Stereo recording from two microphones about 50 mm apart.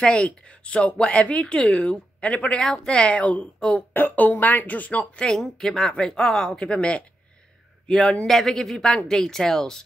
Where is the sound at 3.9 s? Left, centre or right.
Left.